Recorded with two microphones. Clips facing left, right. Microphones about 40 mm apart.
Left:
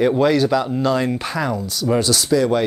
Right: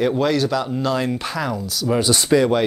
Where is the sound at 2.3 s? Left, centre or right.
Right.